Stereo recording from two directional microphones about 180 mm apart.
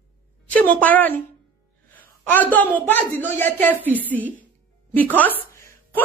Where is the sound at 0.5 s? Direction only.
10° left (ahead or behind).